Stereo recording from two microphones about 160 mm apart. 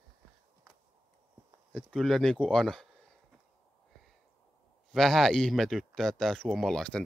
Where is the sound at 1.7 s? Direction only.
5° left (ahead or behind).